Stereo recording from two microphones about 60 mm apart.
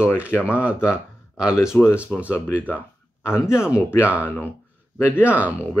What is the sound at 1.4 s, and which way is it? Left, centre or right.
Speech, centre.